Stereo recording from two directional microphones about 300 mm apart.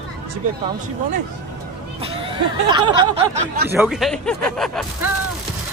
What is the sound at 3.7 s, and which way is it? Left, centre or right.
Speech, centre.